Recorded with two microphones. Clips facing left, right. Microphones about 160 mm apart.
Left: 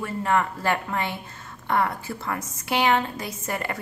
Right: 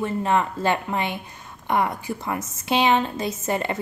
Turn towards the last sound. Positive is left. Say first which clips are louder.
# right 5 dB
turn(degrees=-25)  # may be behind; listen again after turning